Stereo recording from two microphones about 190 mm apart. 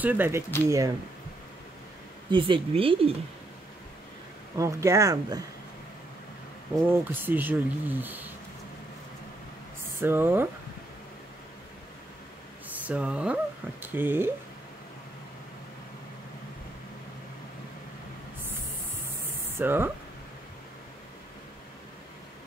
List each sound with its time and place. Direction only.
0.0 s speech: 10° right (ahead or behind)
2.3 s speech: 25° right (ahead or behind)
4.6 s speech: 15° right (ahead or behind)
6.9 s speech: 10° right (ahead or behind)
9.9 s speech: 10° right (ahead or behind)
12.8 s speech: 5° right (ahead or behind)
19.5 s speech: 10° right (ahead or behind)